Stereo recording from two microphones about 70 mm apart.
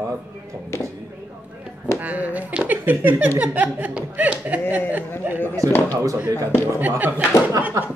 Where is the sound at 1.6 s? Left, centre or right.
Centre.